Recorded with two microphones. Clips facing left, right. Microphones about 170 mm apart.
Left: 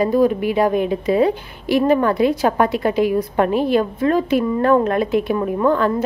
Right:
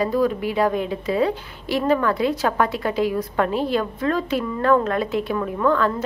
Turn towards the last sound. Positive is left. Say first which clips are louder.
# left 3 dB
turn(degrees=15)  # may be behind; listen again after turning